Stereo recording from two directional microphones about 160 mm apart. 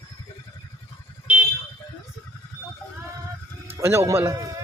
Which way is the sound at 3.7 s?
15° right (ahead or behind).